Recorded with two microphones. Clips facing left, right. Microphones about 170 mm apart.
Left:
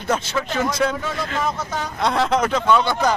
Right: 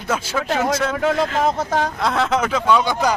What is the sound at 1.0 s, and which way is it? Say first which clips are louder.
Speech: right 8 dB; 75° right (ahead or behind).